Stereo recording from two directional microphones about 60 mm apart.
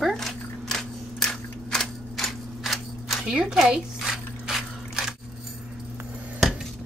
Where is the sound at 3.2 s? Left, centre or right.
Centre.